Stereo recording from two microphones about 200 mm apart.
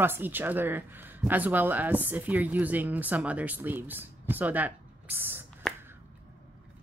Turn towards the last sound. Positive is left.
turn(degrees=-10)  # may be behind; listen again after turning